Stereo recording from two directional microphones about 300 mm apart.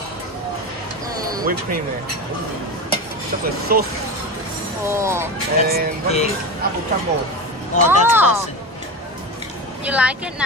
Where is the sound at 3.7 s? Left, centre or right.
Right.